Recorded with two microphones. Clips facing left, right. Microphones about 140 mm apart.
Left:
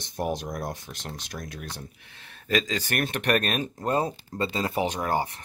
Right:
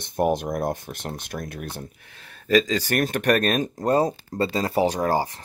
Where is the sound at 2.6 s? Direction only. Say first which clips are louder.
Right 5 dB; 40° right (ahead or behind).